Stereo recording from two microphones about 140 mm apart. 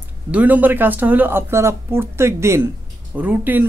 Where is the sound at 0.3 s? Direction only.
10° right (ahead or behind).